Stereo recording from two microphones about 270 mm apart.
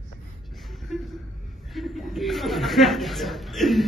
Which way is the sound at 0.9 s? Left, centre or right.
Centre.